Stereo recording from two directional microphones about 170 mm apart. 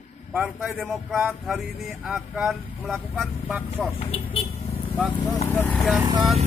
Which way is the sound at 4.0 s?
35° left (ahead or behind).